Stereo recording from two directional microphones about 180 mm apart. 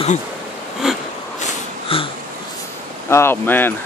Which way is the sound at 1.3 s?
35° left (ahead or behind).